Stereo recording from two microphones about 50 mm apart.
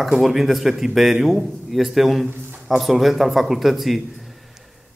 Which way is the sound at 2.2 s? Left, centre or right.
Right.